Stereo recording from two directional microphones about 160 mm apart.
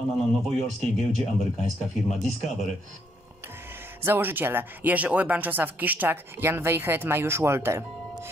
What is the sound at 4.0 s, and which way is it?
Speech, 15° right (ahead or behind).